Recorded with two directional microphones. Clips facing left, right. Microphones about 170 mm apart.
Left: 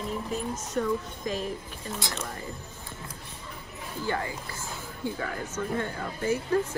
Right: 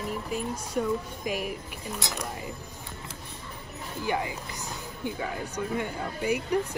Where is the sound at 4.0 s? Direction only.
15° right (ahead or behind).